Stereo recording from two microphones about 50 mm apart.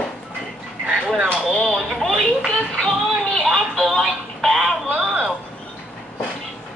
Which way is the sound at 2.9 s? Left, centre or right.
Centre.